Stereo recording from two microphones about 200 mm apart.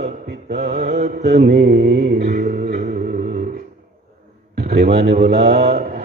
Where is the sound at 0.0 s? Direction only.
50° right (ahead or behind).